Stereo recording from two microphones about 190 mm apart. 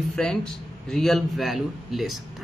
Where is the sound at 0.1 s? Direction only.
5° left (ahead or behind).